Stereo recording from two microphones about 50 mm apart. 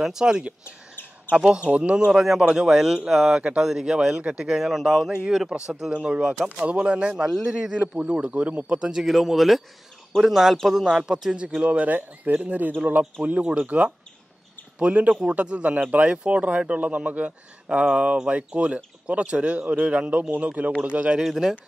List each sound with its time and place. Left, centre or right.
0.0 s a man's voice: centre
0.7 s bird: left
1.5 s a man's voice: right
4.6 s a man's voice: centre; by 7.2 s right
7.2 s speech: centre
7.5 s a man's voice: centre
11.6 s speech: right
13.3 s speech: right
21.2 s speech: centre